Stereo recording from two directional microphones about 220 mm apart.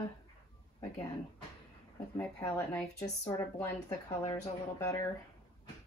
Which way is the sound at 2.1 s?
10° left (ahead or behind).